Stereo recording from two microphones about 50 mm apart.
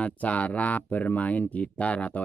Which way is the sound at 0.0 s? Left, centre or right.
Left.